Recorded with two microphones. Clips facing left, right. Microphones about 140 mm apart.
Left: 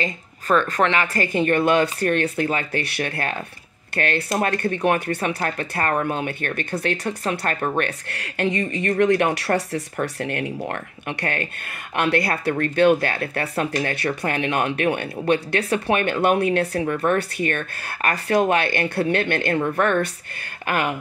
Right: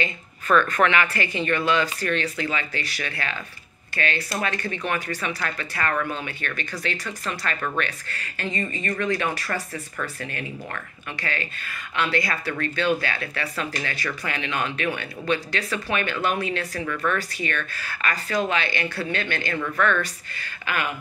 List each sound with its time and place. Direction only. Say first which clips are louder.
0.0 s speech: left 2 dB; 35° left (ahead or behind)
1.1 s speech: left 5 dB; 45° left (ahead or behind)
7.8 s speech: left 4 dB; 65° left (ahead or behind)
16.8 s speech: left 5 dB; 40° left (ahead or behind)
17.2 s speech: left 5 dB; 55° left (ahead or behind)